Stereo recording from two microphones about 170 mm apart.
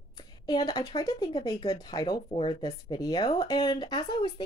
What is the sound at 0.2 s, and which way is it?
Speech, 25° left (ahead or behind).